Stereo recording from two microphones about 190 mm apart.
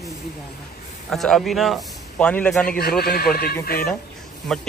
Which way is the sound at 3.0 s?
55° left (ahead or behind).